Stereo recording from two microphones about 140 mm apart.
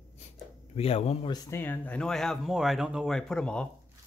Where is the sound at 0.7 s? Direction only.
45° left (ahead or behind).